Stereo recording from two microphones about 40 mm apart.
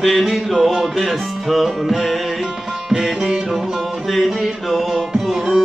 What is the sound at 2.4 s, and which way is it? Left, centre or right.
Music, centre.